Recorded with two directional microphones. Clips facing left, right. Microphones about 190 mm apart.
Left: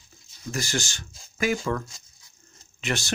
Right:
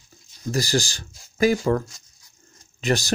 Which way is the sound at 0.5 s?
35° right (ahead or behind).